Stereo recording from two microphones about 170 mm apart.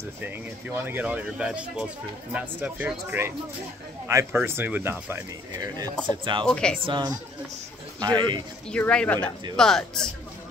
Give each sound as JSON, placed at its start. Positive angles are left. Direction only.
{"t": 0.2, "sound": "speech", "side_deg": -10}
{"t": 6.4, "sound": "speech", "side_deg": 5}
{"t": 6.9, "sound": "a man's voice", "side_deg": -25}
{"t": 8.6, "sound": "speech", "side_deg": 5}